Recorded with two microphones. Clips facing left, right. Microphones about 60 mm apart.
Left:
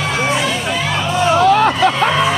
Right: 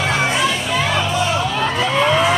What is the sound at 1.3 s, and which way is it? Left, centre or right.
Hubbub, left.